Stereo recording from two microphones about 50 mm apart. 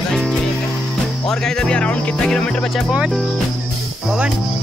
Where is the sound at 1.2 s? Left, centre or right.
Centre.